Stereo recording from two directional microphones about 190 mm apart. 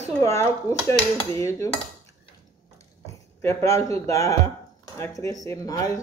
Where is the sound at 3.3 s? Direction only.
15° left (ahead or behind).